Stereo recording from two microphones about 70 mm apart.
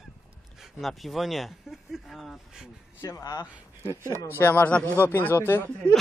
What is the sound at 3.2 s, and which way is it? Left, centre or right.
Speech, left.